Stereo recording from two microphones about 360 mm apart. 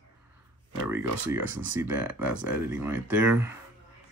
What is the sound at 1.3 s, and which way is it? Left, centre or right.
Speech, centre.